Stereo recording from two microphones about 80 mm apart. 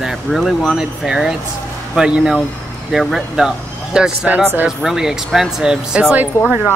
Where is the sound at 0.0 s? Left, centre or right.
Centre.